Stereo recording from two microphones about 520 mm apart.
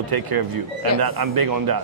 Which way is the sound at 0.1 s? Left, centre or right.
Right.